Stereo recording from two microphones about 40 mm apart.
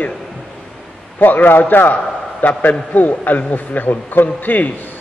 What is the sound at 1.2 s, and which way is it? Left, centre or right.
A man's voice, left.